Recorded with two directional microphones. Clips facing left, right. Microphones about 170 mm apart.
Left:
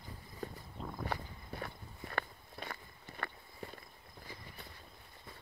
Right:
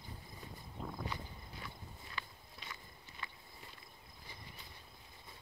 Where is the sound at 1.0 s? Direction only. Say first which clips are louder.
Left 4 dB; 60° left (ahead or behind).